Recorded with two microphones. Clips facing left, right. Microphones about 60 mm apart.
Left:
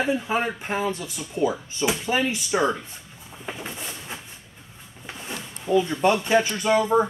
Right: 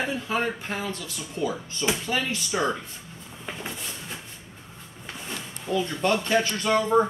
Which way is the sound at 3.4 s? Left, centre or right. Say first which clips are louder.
Left 1 dB; centre.